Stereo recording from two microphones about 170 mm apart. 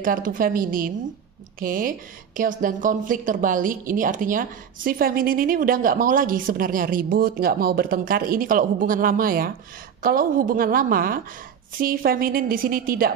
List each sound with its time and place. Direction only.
0.0 s a woman's voice: 55° right (ahead or behind)